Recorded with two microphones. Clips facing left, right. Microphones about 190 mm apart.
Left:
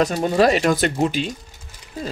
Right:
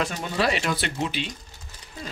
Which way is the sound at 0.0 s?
40° left (ahead or behind).